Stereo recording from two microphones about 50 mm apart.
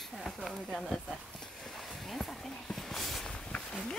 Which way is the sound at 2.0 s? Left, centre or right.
Centre.